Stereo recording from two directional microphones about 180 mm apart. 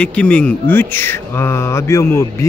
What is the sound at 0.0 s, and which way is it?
Speech, 5° left (ahead or behind).